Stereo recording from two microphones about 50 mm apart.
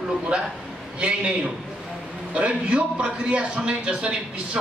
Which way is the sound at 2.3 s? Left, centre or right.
Right.